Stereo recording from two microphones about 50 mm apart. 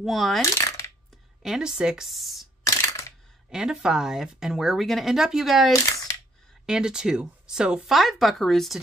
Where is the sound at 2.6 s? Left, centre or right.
Left.